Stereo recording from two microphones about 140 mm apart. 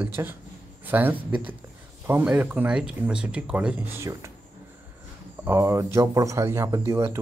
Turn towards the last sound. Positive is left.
turn(degrees=-20)  # may be behind; listen again after turning